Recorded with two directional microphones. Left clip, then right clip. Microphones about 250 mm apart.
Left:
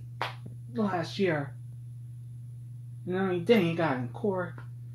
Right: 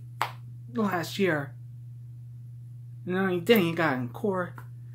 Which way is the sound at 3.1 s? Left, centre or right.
Centre.